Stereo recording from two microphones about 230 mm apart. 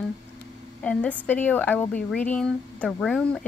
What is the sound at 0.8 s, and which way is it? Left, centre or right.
Speech, centre.